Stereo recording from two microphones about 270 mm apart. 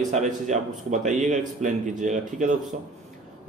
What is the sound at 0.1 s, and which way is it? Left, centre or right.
A man's voice, right.